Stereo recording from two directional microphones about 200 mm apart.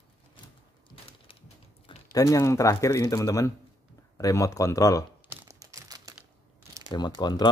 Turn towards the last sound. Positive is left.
turn(degrees=20)  # may be behind; listen again after turning